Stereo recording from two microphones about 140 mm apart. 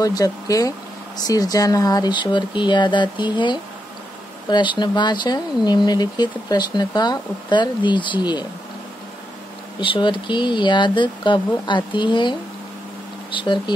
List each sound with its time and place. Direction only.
0.0 s speech: 25° left (ahead or behind)
9.8 s speech: 35° left (ahead or behind)